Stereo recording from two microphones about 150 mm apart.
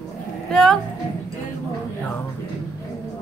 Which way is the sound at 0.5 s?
Centre (ahead or behind).